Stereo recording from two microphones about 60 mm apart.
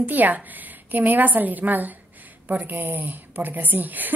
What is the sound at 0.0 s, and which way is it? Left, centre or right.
A woman's voice, right.